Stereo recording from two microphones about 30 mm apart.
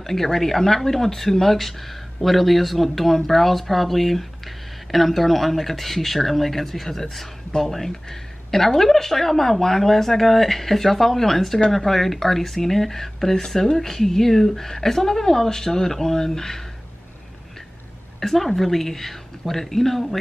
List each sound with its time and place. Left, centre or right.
0.0 s speech: centre
18.2 s speech: centre